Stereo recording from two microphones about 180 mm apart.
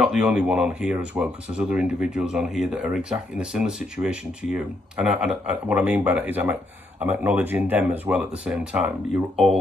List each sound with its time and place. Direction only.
0.0 s speech: 5° right (ahead or behind)